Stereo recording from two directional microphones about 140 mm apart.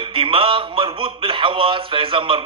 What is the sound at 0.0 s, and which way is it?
A man's voice, 40° right (ahead or behind).